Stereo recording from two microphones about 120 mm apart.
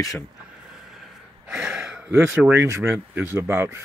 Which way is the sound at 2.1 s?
15° right (ahead or behind).